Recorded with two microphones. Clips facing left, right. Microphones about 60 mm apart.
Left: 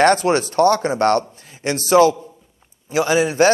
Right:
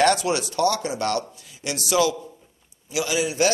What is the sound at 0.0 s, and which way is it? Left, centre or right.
A man's voice, left.